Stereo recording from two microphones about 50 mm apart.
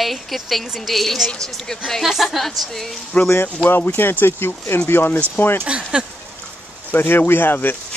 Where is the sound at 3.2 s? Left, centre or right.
Left.